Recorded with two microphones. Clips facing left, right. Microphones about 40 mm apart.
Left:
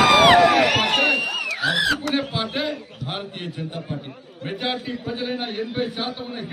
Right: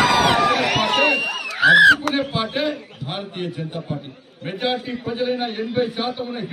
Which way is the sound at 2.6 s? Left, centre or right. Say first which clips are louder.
Right 3 dB; right.